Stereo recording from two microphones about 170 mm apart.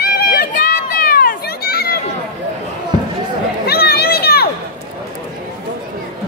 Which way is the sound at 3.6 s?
70° left (ahead or behind).